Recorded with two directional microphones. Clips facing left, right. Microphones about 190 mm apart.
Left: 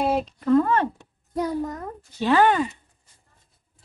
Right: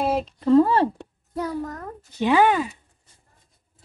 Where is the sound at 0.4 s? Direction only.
30° right (ahead or behind).